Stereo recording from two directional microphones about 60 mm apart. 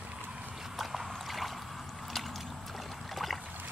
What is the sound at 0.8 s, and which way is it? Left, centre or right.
Boat, centre.